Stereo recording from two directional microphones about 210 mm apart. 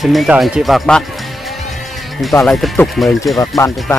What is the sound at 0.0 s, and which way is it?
Speech, centre (ahead or behind).